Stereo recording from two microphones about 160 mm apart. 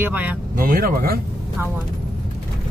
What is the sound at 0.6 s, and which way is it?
Speech, 65° right (ahead or behind).